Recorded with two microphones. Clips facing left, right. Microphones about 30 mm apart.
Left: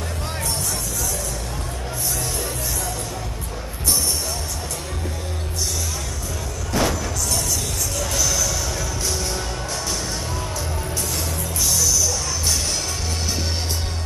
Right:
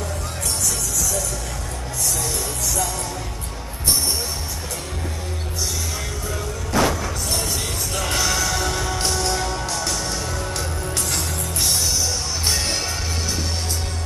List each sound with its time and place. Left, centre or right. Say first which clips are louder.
0.6 s music: right 2 dB; right
2.6 s music: right 3 dB; right
6.7 s music: right 2 dB; centre
7.2 s music: right 1 dB; right
11.0 s music: right 1 dB; right